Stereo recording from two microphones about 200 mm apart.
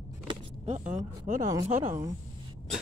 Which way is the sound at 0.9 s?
40° right (ahead or behind).